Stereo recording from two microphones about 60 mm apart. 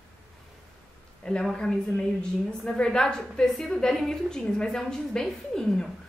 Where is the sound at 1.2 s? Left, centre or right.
Centre.